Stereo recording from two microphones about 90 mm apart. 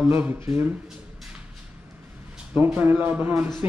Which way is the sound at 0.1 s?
25° right (ahead or behind).